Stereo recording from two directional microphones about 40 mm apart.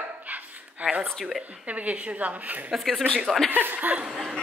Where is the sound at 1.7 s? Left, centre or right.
Right.